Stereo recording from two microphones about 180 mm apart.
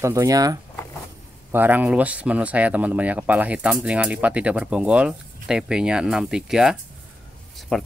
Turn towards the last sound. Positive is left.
turn(degrees=0)  # may be behind; listen again after turning